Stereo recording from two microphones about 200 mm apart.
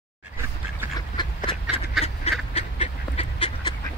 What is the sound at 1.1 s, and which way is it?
Duck, 25° left (ahead or behind).